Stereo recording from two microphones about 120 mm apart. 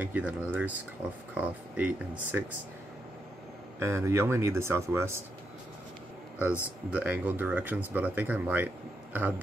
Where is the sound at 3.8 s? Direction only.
25° right (ahead or behind).